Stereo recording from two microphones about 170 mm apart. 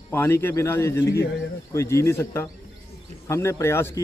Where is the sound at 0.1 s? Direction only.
15° left (ahead or behind).